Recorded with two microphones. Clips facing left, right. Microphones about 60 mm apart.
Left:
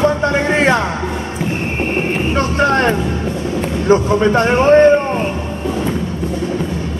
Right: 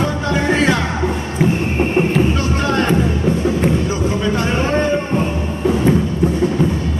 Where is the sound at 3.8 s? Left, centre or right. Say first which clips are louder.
Left 6 dB; left.